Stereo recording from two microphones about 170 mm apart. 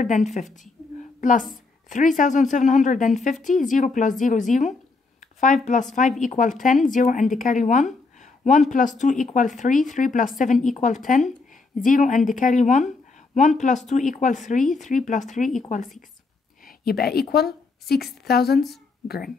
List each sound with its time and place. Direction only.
0.0 s a woman's voice: 45° left (ahead or behind)
13.8 s speech: 45° left (ahead or behind)
16.6 s a woman's voice: 65° left (ahead or behind)